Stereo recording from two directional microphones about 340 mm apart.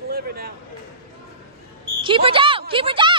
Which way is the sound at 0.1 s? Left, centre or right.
Right.